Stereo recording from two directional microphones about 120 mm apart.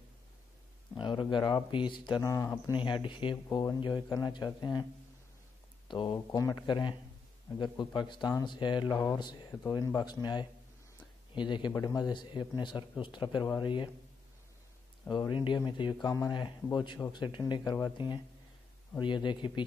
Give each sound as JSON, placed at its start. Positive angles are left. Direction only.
{"t": 0.9, "sound": "a sound", "side_deg": 40}
{"t": 1.3, "sound": "speech", "side_deg": 40}
{"t": 2.2, "sound": "speech", "side_deg": 25}
{"t": 2.8, "sound": "speech", "side_deg": 40}
{"t": 5.9, "sound": "speech", "side_deg": 40}
{"t": 6.1, "sound": "speech", "side_deg": 30}
{"t": 11.7, "sound": "speech", "side_deg": 30}
{"t": 15.0, "sound": "speech", "side_deg": 40}